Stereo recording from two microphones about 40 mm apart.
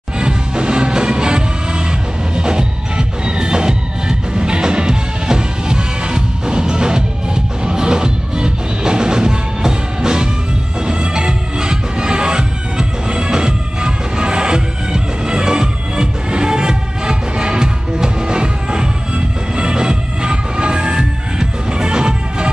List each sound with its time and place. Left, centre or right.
0.2 s music: right